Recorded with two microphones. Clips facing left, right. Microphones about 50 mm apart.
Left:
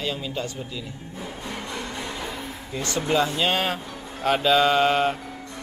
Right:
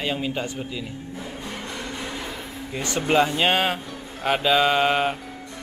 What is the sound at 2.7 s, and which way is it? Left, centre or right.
Speech, centre.